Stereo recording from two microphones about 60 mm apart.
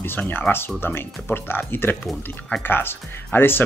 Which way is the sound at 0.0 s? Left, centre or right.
Left.